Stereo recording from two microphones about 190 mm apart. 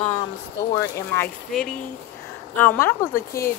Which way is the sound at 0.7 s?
15° left (ahead or behind).